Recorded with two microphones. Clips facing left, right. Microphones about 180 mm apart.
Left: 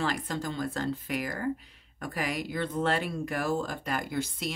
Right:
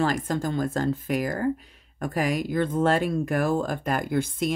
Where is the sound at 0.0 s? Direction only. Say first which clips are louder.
Right 6 dB; 45° right (ahead or behind).